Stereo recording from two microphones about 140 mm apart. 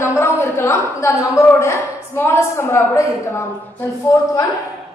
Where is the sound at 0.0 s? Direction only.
15° left (ahead or behind).